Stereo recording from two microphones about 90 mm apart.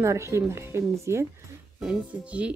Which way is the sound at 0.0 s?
35° right (ahead or behind).